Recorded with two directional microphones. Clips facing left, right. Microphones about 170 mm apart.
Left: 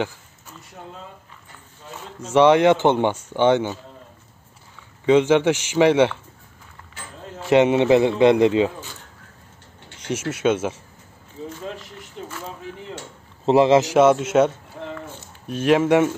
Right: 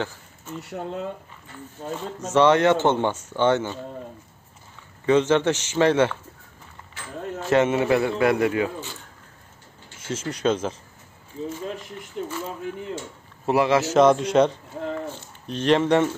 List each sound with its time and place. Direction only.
0.6 s speech: 70° right (ahead or behind)
1.8 s speech: 50° right (ahead or behind)
2.1 s speech: 10° left (ahead or behind)
5.0 s speech: 15° left (ahead or behind)
7.4 s a man's voice: 15° left (ahead or behind)
9.9 s a sound: 15° left (ahead or behind)
10.3 s speech: 5° left (ahead or behind)
13.5 s a man's voice: 25° left (ahead or behind)
13.9 s speech: 5° left (ahead or behind)